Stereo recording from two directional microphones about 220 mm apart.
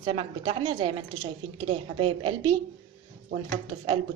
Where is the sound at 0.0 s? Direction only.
25° right (ahead or behind).